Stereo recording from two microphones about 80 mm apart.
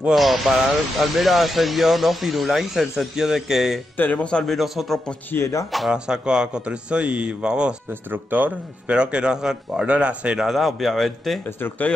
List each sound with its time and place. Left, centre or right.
0.1 s speech: centre
3.9 s speech: left
4.6 s speech: centre
5.3 s speech: left
5.7 s a man's voice: centre
7.9 s a man's voice: right
10.5 s speech: centre
11.4 s speech: left